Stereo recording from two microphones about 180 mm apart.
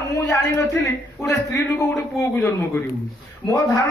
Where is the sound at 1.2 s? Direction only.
15° left (ahead or behind).